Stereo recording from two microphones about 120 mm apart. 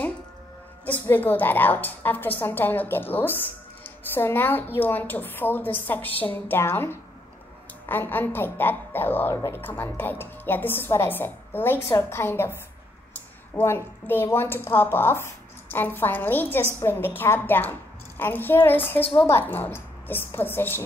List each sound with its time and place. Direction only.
1.0 s a woman's voice: 15° left (ahead or behind)
9.3 s speech: 30° left (ahead or behind)
9.6 s a woman's voice: 15° left (ahead or behind)